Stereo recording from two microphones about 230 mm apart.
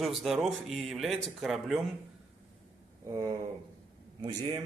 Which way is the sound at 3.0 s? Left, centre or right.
Centre.